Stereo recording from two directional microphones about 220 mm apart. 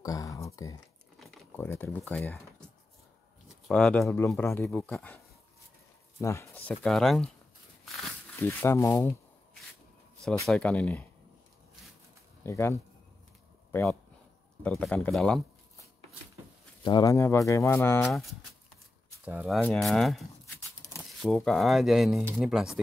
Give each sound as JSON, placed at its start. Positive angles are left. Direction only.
{"t": 0.0, "sound": "a sound", "side_deg": 15}
{"t": 1.2, "sound": "speech", "side_deg": 5}
{"t": 6.2, "sound": "speech", "side_deg": 10}
{"t": 8.4, "sound": "speech", "side_deg": 10}
{"t": 12.4, "sound": "speech", "side_deg": 15}
{"t": 14.6, "sound": "speech", "side_deg": 5}
{"t": 16.8, "sound": "speech", "side_deg": 20}
{"t": 19.2, "sound": "speech", "side_deg": -5}
{"t": 21.5, "sound": "speech", "side_deg": 0}